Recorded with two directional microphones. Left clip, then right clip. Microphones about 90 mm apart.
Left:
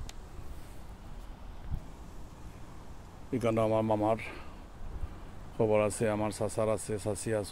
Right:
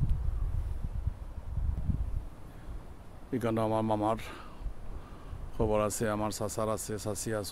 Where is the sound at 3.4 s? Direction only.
25° right (ahead or behind).